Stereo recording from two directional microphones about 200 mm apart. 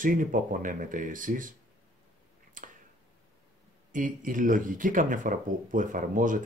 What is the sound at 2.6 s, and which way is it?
Finger snapping, 40° right (ahead or behind).